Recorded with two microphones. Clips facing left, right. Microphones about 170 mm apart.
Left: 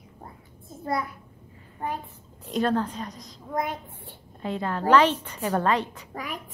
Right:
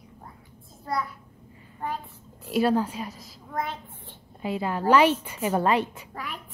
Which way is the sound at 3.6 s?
15° left (ahead or behind).